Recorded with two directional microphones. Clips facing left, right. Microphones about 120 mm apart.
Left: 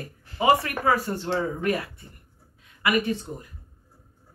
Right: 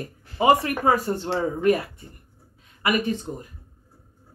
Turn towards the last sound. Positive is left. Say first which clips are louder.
# right 3 dB
turn(degrees=-25)  # may be behind; listen again after turning